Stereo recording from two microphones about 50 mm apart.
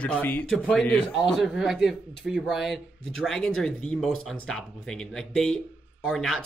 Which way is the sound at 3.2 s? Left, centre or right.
Centre.